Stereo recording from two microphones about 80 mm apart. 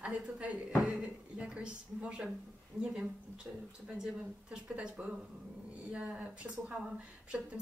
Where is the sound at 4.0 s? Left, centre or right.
Centre.